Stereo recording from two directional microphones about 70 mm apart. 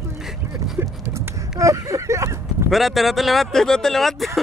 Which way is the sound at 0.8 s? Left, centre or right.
Right.